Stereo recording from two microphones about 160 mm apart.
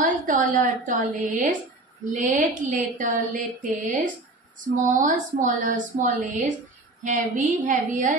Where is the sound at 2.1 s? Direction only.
50° right (ahead or behind).